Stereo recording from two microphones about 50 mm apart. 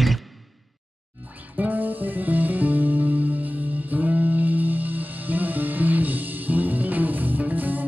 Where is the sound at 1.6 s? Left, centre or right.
Right.